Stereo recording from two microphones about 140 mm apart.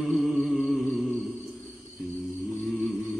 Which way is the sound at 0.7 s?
Centre (ahead or behind).